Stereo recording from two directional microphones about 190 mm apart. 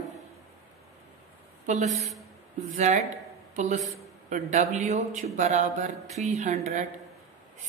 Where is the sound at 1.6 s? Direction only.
40° right (ahead or behind).